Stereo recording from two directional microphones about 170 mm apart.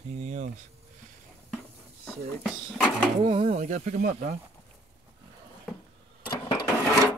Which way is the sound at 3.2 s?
40° right (ahead or behind).